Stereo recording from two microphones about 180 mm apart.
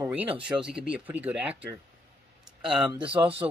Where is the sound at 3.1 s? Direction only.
30° right (ahead or behind).